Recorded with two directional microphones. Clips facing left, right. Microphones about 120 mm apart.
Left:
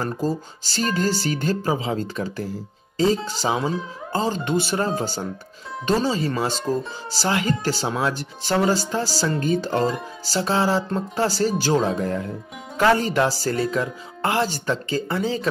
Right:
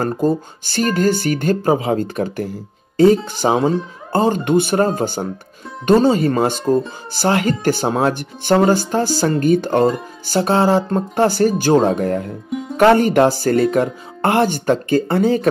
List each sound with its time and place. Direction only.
0.0 s speech: 55° right (ahead or behind)